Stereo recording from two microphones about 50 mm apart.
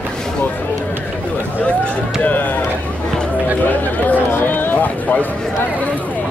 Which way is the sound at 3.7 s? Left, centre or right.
Left.